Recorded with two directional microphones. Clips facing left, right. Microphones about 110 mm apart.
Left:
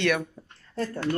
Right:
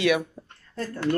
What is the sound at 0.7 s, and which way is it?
Speech, 30° left (ahead or behind).